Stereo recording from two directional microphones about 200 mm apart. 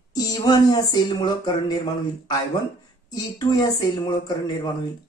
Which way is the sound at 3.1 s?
20° left (ahead or behind).